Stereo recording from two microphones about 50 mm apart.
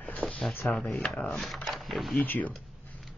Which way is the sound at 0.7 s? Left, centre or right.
Centre.